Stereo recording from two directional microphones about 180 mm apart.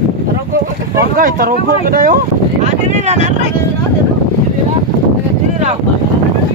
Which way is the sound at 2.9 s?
40° right (ahead or behind).